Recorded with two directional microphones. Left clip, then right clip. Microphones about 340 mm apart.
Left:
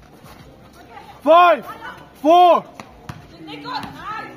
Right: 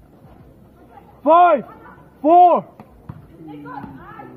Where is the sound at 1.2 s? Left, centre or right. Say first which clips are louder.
Even; centre.